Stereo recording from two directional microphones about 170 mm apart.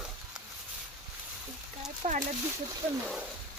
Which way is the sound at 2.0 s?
45° right (ahead or behind).